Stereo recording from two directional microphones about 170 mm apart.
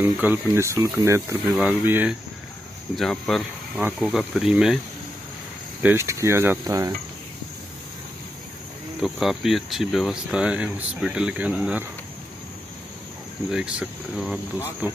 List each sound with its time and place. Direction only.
0.0 s speech: 10° right (ahead or behind)
3.0 s speech: centre (ahead or behind)
5.8 s speech: 15° right (ahead or behind)
9.0 s speech: 5° right (ahead or behind)
13.5 s speech: 5° right (ahead or behind)